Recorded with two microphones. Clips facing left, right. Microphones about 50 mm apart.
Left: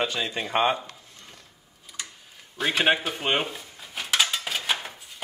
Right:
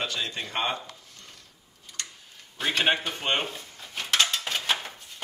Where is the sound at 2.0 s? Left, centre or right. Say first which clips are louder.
Even; centre.